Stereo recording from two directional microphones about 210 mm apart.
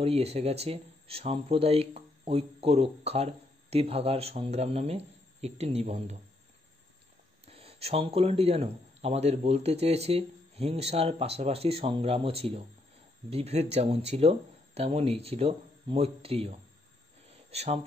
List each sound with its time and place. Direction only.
0.0 s speech: 30° right (ahead or behind)
7.4 s speech: 30° right (ahead or behind)
17.3 s a sound: 30° right (ahead or behind)